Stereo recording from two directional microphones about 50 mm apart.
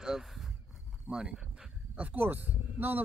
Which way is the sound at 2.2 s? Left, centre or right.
Right.